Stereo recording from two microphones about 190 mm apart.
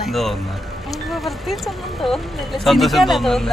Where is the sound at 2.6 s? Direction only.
Centre (ahead or behind).